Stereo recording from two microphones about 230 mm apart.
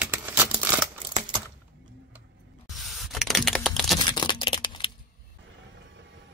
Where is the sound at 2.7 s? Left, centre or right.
Centre.